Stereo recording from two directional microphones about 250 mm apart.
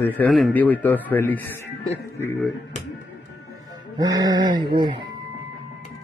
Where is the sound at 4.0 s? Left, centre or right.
Centre.